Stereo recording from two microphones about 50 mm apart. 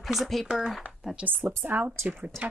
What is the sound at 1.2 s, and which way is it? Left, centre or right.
Speech, right.